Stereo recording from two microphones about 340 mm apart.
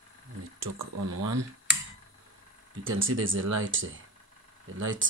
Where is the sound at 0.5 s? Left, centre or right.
Right.